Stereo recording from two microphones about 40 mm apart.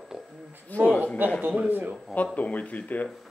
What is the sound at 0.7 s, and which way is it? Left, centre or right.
Speech, left.